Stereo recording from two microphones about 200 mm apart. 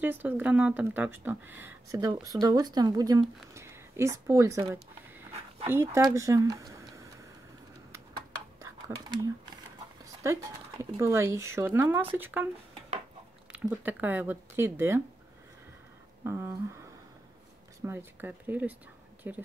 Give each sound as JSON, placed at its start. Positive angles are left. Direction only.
{"t": 0.0, "sound": "speech", "side_deg": -10}
{"t": 8.8, "sound": "speech", "side_deg": -15}
{"t": 13.5, "sound": "speech", "side_deg": -5}
{"t": 16.3, "sound": "speech", "side_deg": -15}
{"t": 17.8, "sound": "speech", "side_deg": -10}